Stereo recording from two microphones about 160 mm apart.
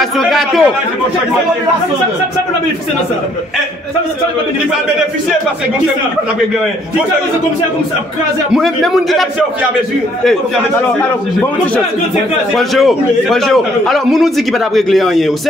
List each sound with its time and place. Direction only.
0.0 s a sound: centre (ahead or behind)
8.5 s a man's voice: centre (ahead or behind)
12.5 s a man's voice: centre (ahead or behind)